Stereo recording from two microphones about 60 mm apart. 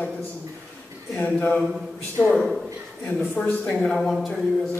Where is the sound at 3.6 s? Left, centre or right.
Centre.